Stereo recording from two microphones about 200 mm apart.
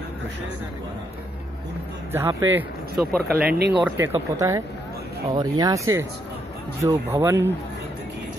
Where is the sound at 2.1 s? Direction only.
15° right (ahead or behind).